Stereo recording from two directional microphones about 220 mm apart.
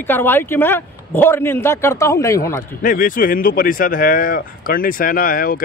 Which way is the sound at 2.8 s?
40° left (ahead or behind).